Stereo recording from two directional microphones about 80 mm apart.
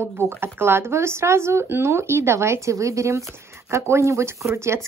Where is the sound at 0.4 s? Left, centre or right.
Right.